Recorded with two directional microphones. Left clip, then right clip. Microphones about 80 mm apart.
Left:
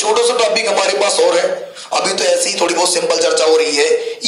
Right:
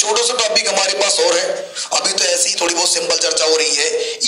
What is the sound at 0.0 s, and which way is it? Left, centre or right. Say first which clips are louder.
Speech: left 3 dB; left.